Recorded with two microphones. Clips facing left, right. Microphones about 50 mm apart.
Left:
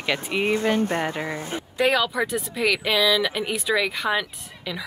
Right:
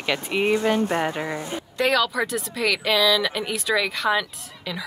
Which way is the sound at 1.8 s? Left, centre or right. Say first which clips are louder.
Even; centre.